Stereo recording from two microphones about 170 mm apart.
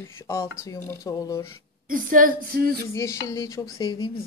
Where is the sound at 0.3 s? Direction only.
15° left (ahead or behind).